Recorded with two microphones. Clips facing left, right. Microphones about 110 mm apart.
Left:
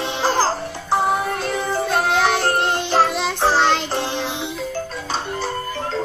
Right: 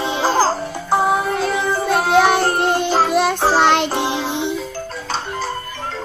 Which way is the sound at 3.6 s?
65° right (ahead or behind).